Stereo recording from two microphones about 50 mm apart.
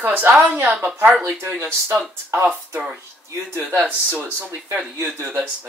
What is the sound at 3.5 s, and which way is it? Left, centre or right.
Speech, right.